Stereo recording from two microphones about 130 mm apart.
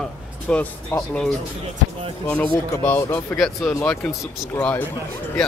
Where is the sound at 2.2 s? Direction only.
10° left (ahead or behind).